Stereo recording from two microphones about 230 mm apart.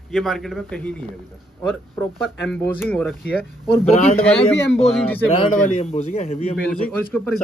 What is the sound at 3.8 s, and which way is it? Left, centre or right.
Speech, left.